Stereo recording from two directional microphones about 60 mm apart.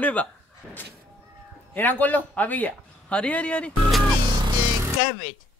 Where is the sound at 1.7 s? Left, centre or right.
Left.